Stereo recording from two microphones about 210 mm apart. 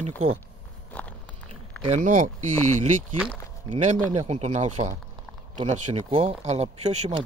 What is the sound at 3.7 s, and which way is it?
Speech, 35° right (ahead or behind).